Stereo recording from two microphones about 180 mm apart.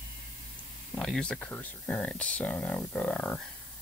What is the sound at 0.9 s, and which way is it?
Speech, 5° left (ahead or behind).